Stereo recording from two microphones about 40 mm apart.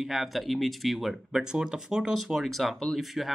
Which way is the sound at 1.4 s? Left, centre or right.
Centre.